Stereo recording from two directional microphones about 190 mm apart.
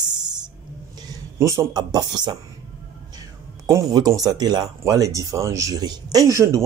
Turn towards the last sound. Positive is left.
turn(degrees=-15)  # may be behind; listen again after turning